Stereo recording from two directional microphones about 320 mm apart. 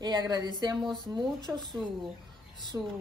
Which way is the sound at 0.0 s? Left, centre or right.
Centre.